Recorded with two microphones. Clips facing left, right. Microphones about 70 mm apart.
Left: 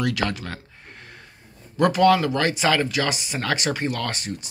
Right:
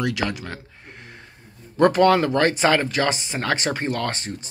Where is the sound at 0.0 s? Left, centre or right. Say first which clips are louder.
Even; centre.